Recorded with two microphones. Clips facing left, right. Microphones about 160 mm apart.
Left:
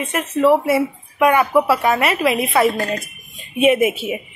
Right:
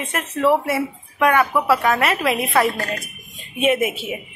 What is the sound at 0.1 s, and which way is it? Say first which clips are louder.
Speech: left 3 dB; centre (ahead or behind).